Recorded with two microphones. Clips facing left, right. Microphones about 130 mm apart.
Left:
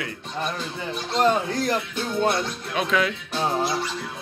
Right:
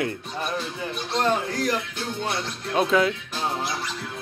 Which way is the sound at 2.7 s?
25° right (ahead or behind).